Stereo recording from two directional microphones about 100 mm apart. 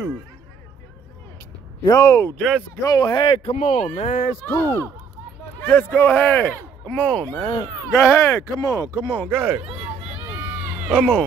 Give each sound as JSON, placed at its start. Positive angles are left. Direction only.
{"t": 1.9, "sound": "speech", "side_deg": 30}
{"t": 2.3, "sound": "speech", "side_deg": 5}
{"t": 2.8, "sound": "speech", "side_deg": 40}
{"t": 3.2, "sound": "speech", "side_deg": 65}
{"t": 4.5, "sound": "a man's voice", "side_deg": 25}
{"t": 7.4, "sound": "speech", "side_deg": 30}
{"t": 9.1, "sound": "a man's voice", "side_deg": 10}
{"t": 10.1, "sound": "run", "side_deg": -15}